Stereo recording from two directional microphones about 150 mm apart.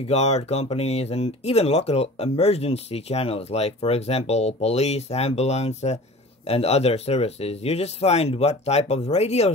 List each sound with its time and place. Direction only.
0.1 s speech: 45° left (ahead or behind)